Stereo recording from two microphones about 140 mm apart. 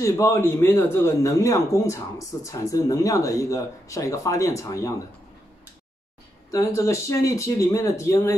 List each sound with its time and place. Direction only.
0.0 s a man's voice: 20° left (ahead or behind)
6.5 s a man's voice: 20° left (ahead or behind)